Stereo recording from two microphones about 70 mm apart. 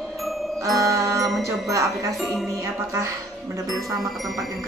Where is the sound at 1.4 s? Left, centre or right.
Right.